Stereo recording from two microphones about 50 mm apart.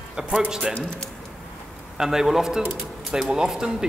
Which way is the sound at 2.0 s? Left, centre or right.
Centre.